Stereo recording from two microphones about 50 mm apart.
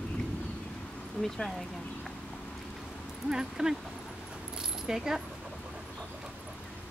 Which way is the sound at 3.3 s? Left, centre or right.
Centre.